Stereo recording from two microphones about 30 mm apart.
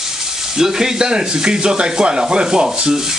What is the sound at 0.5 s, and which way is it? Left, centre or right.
Sanding, centre.